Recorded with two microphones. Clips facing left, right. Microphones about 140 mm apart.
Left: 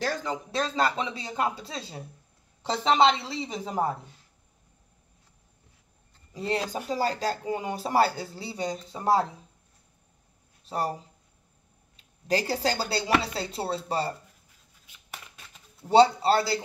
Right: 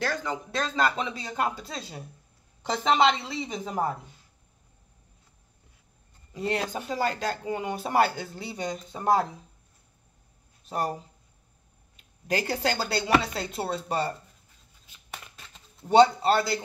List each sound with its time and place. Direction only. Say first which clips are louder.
0.0 s speech: even; 35° left (ahead or behind)
6.3 s speech: even; 35° left (ahead or behind)
12.3 s speech: left 1 dB; 35° left (ahead or behind)
15.9 s speech: even; 30° left (ahead or behind)